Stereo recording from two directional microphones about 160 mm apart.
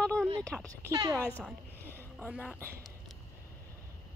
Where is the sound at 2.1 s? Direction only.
Centre (ahead or behind).